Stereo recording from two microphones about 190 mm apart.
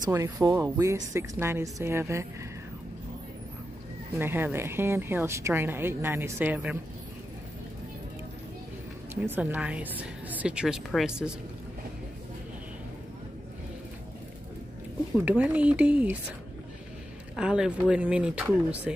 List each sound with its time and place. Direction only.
0.0 s a woman's voice: 20° right (ahead or behind)
4.2 s a woman's voice: 10° right (ahead or behind)
9.1 s a woman's voice: 10° right (ahead or behind)
15.1 s a woman's voice: 10° right (ahead or behind)
17.4 s speech: 5° right (ahead or behind)